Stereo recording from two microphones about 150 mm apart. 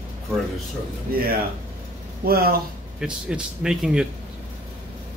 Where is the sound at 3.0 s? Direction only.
5° right (ahead or behind).